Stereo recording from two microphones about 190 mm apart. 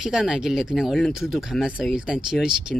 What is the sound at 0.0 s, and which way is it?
Speech, 5° right (ahead or behind).